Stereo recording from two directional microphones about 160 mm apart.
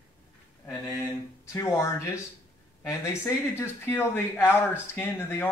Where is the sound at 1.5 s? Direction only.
20° left (ahead or behind).